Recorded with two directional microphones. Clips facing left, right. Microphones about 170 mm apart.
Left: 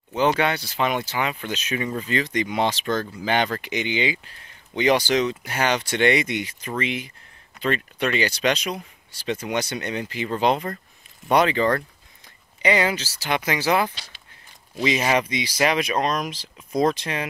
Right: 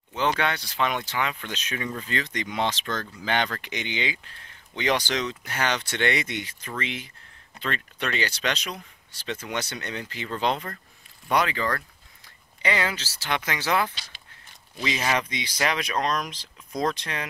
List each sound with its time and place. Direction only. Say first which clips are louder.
0.4 s speech: left 4 dB; 5° left (ahead or behind)